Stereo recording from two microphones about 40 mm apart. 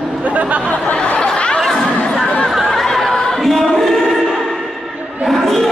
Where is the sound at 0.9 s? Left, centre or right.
Left.